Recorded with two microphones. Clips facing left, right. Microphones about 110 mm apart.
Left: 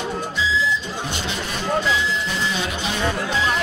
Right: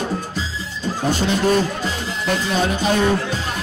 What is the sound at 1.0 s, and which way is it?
Speech, 40° right (ahead or behind).